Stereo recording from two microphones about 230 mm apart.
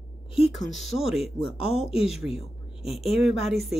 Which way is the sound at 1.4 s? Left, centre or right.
Left.